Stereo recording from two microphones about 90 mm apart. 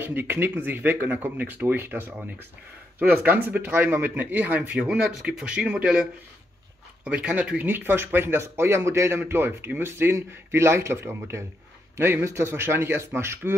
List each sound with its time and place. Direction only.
0.0 s a man's voice: 25° right (ahead or behind)
7.1 s speech: 10° right (ahead or behind); by 13.6 s 30° right (ahead or behind)